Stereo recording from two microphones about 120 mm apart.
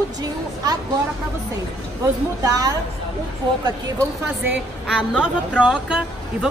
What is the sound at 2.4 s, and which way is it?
Speech, 30° right (ahead or behind).